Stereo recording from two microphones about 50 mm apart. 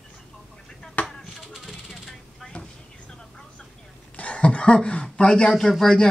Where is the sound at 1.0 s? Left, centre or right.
Centre.